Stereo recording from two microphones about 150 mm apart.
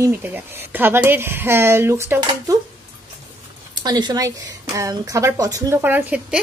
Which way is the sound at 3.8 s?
30° right (ahead or behind).